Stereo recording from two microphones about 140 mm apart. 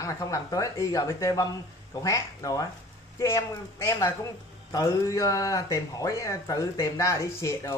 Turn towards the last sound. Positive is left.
turn(degrees=25)  # may be behind; listen again after turning